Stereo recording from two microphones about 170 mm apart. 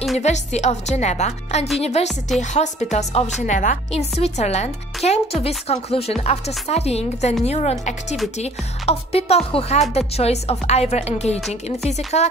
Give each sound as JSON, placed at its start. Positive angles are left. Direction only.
{"t": 0.2, "sound": "a woman's voice", "side_deg": 40}